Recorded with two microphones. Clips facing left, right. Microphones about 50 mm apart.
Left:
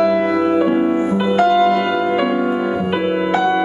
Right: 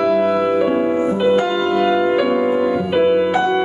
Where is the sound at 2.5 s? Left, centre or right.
Left.